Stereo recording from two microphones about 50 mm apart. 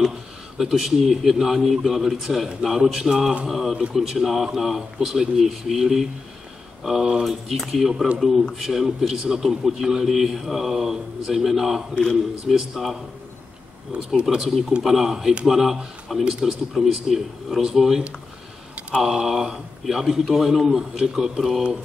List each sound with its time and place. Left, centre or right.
0.6 s a man's voice: centre
7.2 s a man's voice: centre
11.9 s a man's voice: centre
12.4 s a man's voice: centre
14.2 s a man's voice: centre
16.3 s a man's voice: centre
16.7 s a man's voice: centre